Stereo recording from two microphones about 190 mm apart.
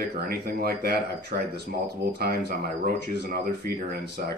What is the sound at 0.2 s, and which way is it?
Speech, 55° right (ahead or behind).